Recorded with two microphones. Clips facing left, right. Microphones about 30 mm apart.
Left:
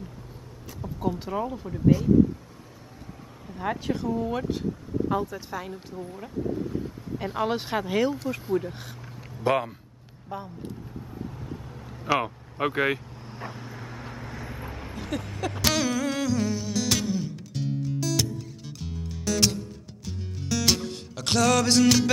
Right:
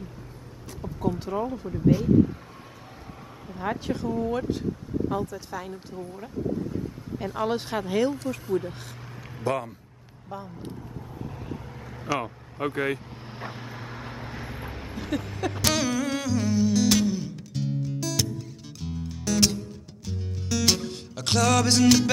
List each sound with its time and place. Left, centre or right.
0.9 s speech: centre
3.5 s speech: centre
5.0 s speech: centre
9.4 s speech: left
10.3 s speech: centre
12.1 s speech: left
13.3 s vehicle: right; by 15.6 s centre
15.6 s music: centre